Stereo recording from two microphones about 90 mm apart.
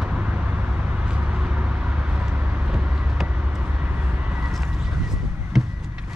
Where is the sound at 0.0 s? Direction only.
15° right (ahead or behind).